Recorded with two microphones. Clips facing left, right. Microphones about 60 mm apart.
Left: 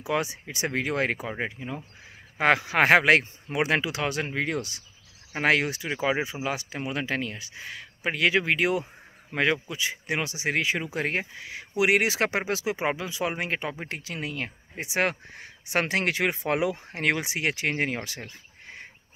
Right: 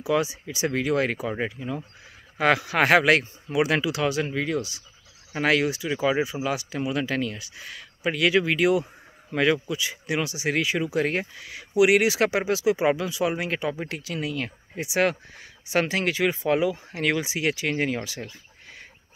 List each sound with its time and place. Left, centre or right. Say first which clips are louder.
0.0 s speech: right 4 dB; left
1.4 s speech: right 3 dB; left
5.3 s speech: right 1 dB; left